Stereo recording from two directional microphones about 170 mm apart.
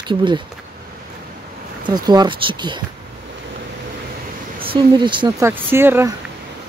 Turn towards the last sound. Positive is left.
turn(degrees=-15)  # may be behind; listen again after turning